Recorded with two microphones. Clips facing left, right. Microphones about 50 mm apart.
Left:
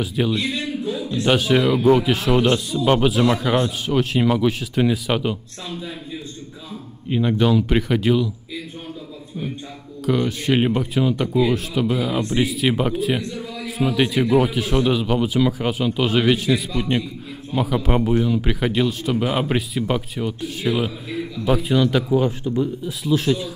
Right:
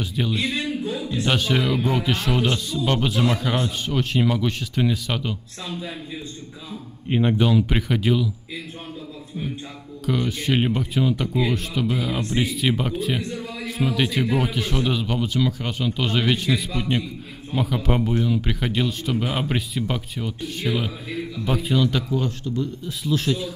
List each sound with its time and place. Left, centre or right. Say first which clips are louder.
0.0 s speech: left 3 dB; centre
7.1 s speech: even; centre
7.3 s speech: left 3 dB; centre
10.0 s speech: left 4 dB; centre
22.8 s speech: left 2 dB; centre